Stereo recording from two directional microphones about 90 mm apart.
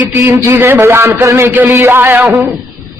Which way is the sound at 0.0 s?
25° right (ahead or behind).